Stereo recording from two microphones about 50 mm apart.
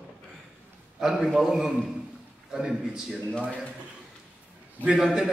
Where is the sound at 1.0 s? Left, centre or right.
Centre.